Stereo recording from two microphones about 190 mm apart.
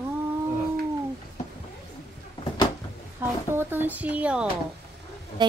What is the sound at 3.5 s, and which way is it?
Speech, 10° right (ahead or behind).